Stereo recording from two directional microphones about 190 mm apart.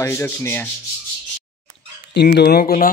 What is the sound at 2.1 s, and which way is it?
Speech, 60° left (ahead or behind).